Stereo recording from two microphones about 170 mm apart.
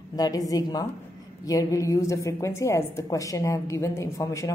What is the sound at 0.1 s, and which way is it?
A woman's voice, 20° left (ahead or behind).